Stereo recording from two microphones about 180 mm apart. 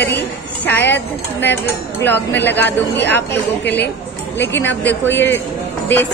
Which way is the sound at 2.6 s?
75° left (ahead or behind).